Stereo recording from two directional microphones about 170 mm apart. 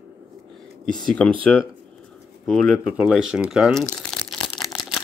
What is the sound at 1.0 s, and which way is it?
Speech, 5° left (ahead or behind).